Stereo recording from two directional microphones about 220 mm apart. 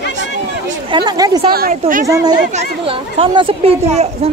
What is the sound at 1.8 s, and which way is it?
Speech, 30° right (ahead or behind).